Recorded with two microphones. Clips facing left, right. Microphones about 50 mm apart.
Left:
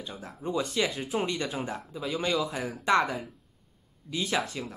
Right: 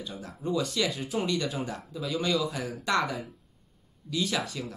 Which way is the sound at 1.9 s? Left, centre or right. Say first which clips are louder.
Right 1 dB; left.